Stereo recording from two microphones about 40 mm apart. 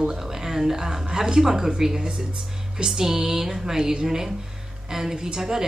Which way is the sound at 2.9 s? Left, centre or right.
Centre.